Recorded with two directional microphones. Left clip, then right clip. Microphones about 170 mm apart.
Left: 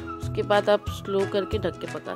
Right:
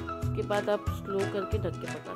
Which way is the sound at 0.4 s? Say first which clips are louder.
Left 8 dB; 45° left (ahead or behind).